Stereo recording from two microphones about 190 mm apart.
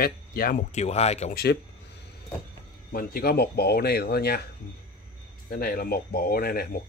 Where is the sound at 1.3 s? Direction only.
60° left (ahead or behind).